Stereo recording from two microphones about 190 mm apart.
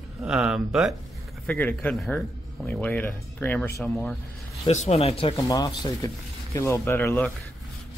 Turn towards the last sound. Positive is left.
turn(degrees=10)  # may be behind; listen again after turning